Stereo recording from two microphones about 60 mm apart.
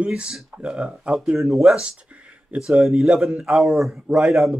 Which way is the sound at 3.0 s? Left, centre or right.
Centre.